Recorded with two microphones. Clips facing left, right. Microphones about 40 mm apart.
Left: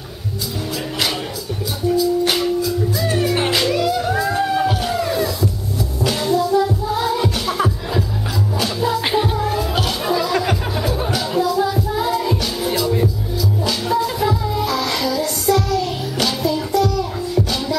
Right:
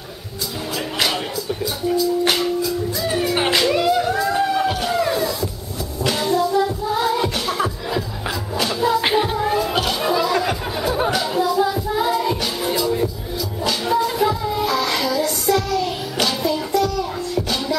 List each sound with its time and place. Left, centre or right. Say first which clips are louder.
2.0 s music: left 1 dB; centre
4.3 s music: left 1 dB; centre